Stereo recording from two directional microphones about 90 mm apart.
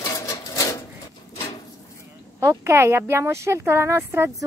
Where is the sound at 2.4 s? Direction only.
30° right (ahead or behind).